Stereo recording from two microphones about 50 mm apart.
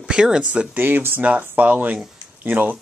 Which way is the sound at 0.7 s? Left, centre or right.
Right.